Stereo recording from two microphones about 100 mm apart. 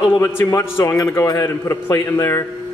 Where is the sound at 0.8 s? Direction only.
40° left (ahead or behind).